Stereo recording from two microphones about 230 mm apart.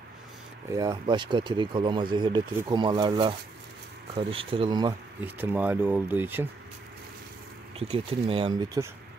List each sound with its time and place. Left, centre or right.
0.7 s speech: centre
5.2 s speech: centre
7.9 s speech: right